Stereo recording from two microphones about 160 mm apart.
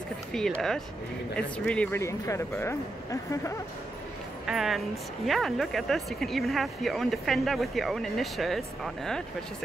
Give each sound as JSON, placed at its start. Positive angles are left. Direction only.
{"t": 0.3, "sound": "speech", "side_deg": 5}
{"t": 4.5, "sound": "speech", "side_deg": 0}